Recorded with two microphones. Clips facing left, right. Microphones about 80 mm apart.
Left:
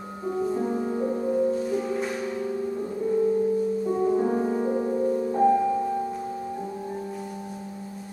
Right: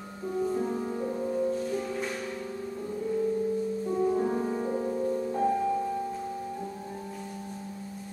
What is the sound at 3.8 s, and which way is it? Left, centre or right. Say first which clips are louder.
Music: left 2 dB; centre.